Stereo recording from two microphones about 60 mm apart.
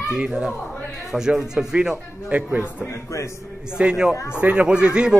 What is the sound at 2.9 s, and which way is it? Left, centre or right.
Speech, left.